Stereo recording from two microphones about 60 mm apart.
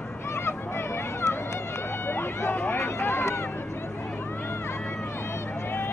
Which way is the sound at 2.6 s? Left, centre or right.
Left.